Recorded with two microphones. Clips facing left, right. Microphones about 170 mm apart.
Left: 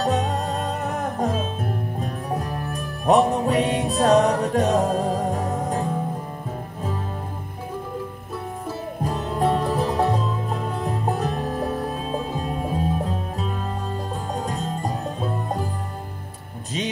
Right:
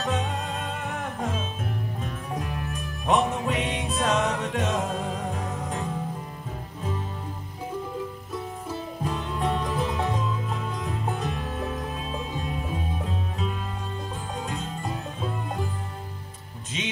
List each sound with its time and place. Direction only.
0.0 s music: 35° left (ahead or behind)
9.0 s music: 35° left (ahead or behind)